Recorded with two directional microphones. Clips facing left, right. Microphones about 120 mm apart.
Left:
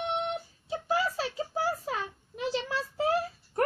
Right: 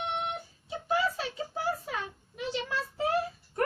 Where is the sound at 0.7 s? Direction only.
30° left (ahead or behind).